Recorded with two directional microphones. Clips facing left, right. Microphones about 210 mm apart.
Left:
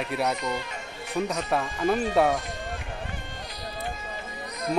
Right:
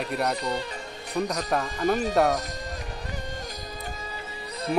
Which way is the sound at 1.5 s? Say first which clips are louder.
Even; centre (ahead or behind).